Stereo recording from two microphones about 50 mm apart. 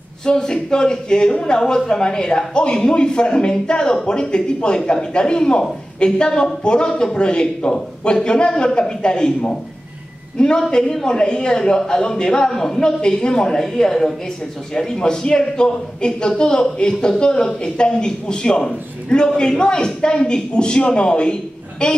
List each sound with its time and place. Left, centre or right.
0.2 s speech: centre